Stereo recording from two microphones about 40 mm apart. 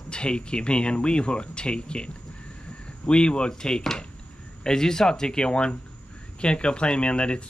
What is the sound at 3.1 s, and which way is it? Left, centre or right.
Speech, left.